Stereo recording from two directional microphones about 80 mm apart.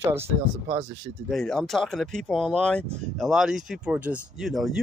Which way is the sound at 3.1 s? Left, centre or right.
Centre.